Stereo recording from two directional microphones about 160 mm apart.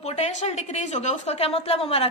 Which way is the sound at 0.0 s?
45° left (ahead or behind).